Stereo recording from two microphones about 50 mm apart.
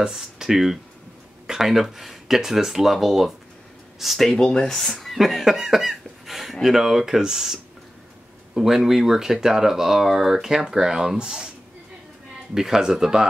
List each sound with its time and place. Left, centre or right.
0.1 s speech: centre
4.5 s speech: centre
4.7 s speech: centre
12.5 s speech: centre